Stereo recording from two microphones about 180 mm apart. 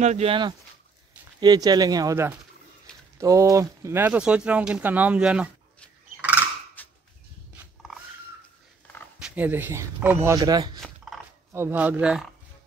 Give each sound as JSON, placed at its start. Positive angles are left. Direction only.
{"t": 0.0, "sound": "speech", "side_deg": -35}
{"t": 6.8, "sound": "a sound", "side_deg": 10}
{"t": 9.2, "sound": "speech", "side_deg": -10}
{"t": 11.5, "sound": "speech", "side_deg": -10}